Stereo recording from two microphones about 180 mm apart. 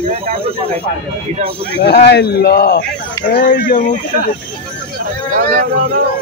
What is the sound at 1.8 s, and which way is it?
Speech, 65° left (ahead or behind).